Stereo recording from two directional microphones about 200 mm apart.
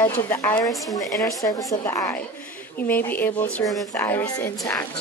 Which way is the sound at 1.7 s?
15° left (ahead or behind).